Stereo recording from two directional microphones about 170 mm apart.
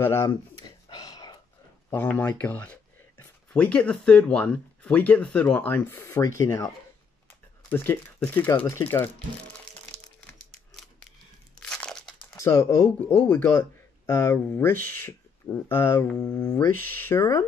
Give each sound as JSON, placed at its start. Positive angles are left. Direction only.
{"t": 0.0, "sound": "speech", "side_deg": 15}
{"t": 0.3, "sound": "a sound", "side_deg": 25}
{"t": 1.9, "sound": "speech", "side_deg": 10}
{"t": 7.7, "sound": "speech", "side_deg": 10}
{"t": 11.6, "sound": "crunch", "side_deg": 5}
{"t": 12.4, "sound": "speech", "side_deg": 15}